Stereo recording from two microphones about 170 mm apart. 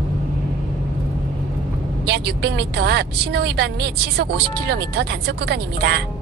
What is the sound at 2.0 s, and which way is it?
A woman's voice, 75° right (ahead or behind).